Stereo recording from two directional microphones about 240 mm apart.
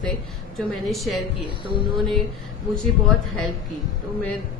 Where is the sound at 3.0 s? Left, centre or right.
Centre.